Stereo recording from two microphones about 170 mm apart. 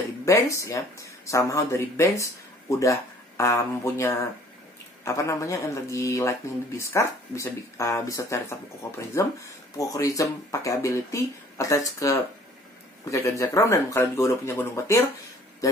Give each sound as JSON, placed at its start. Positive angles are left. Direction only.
{"t": 0.2, "sound": "speech", "side_deg": 15}